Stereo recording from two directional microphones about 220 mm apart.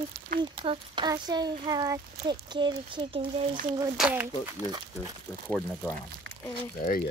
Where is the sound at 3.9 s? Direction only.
5° right (ahead or behind).